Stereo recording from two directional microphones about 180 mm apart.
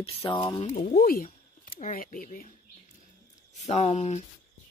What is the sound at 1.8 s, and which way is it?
Speech, 45° left (ahead or behind).